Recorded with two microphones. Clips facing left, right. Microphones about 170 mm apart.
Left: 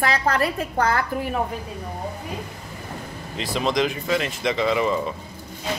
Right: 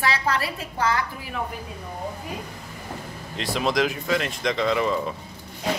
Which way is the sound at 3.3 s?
Centre (ahead or behind).